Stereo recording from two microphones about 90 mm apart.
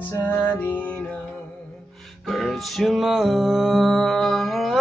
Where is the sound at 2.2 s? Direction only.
Centre (ahead or behind).